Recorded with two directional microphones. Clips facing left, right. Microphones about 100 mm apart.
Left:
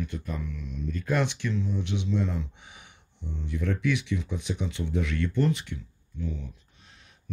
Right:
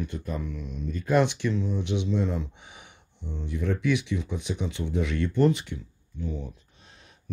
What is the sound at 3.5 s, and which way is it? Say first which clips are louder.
Speech: right 2 dB; 10° right (ahead or behind).